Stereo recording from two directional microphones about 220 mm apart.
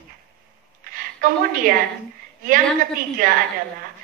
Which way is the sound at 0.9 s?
40° right (ahead or behind).